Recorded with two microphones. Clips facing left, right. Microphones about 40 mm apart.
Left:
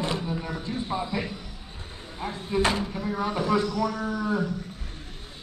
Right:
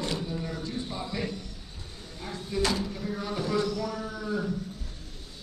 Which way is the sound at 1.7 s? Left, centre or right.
Left.